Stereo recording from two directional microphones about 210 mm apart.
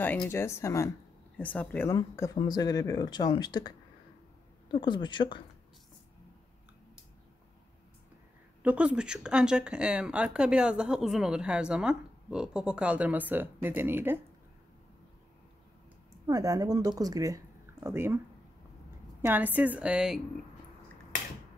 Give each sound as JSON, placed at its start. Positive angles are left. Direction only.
{"t": 0.0, "sound": "speech", "side_deg": 10}
{"t": 8.6, "sound": "speech", "side_deg": -5}
{"t": 16.3, "sound": "speech", "side_deg": -15}
{"t": 19.2, "sound": "a woman's voice", "side_deg": -10}